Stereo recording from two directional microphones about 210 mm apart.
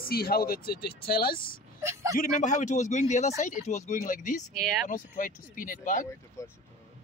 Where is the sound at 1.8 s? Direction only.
15° right (ahead or behind).